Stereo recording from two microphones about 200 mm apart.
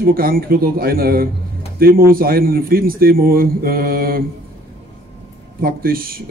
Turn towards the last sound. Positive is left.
turn(degrees=-45)  # may be behind; listen again after turning